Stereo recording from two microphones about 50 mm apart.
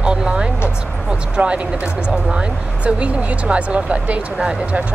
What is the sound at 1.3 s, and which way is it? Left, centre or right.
Speech, right.